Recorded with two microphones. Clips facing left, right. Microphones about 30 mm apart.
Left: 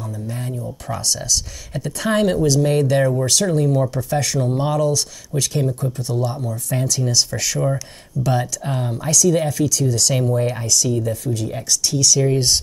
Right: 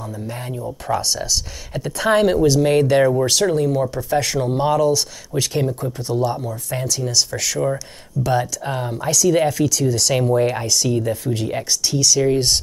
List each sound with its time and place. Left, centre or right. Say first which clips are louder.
0.5 s speech: right 3 dB; right
0.9 s speech: right 1 dB; centre
3.6 s speech: even; centre
4.2 s speech: right 2 dB; centre
6.3 s speech: left 1 dB; centre; by 11.6 s right
11.7 s speech: left 1 dB; centre